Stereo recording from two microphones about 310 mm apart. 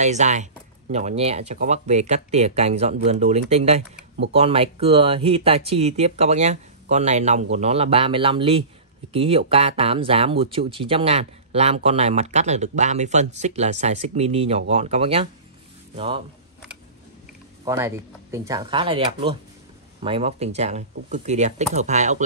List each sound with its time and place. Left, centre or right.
0.0 s speech: right
17.6 s speech: centre